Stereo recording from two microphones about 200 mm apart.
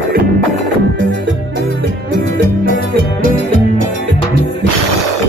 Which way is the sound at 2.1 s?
50° right (ahead or behind).